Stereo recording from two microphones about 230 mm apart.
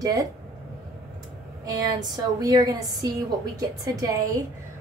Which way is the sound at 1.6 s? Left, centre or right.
Centre.